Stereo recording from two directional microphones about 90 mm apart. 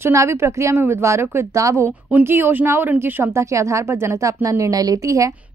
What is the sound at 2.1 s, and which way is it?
A woman's voice, 20° right (ahead or behind).